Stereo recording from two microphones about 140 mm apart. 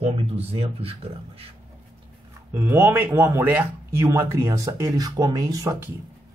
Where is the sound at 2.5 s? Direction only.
15° right (ahead or behind).